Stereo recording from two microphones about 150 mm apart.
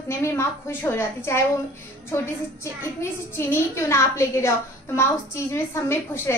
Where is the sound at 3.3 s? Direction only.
15° left (ahead or behind).